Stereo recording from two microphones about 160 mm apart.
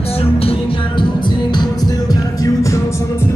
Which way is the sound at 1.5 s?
25° left (ahead or behind).